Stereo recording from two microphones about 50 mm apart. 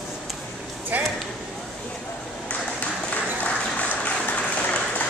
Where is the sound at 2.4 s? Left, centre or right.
Left.